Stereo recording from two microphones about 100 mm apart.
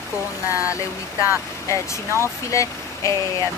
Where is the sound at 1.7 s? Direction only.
30° left (ahead or behind).